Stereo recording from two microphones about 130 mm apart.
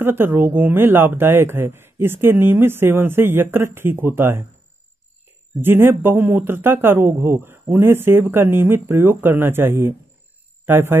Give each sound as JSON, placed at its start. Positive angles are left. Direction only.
{"t": 0.0, "sound": "speech", "side_deg": -15}
{"t": 5.6, "sound": "speech", "side_deg": -15}